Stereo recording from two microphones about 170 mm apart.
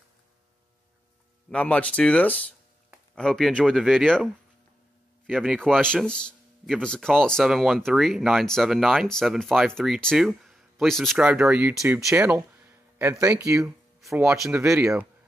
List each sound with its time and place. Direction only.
1.5 s speech: 10° left (ahead or behind)
12.1 s speech: 15° right (ahead or behind)
14.1 s speech: 5° right (ahead or behind)
14.6 s speech: 15° right (ahead or behind)